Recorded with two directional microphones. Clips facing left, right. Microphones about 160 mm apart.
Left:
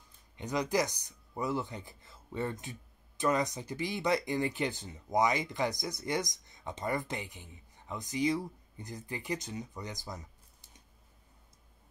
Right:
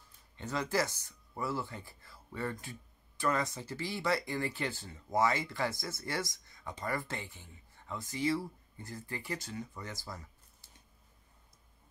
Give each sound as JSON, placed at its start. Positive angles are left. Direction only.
{"t": 0.4, "sound": "speech", "side_deg": 15}